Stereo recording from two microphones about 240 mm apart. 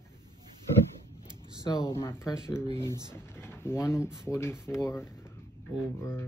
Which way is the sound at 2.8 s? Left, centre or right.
Centre.